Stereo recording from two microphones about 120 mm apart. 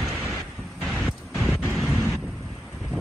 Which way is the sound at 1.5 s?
5° right (ahead or behind).